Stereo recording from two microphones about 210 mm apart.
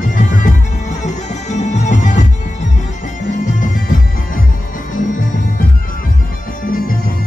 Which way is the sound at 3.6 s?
40° left (ahead or behind).